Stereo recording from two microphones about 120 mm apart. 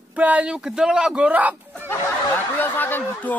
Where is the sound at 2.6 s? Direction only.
15° left (ahead or behind).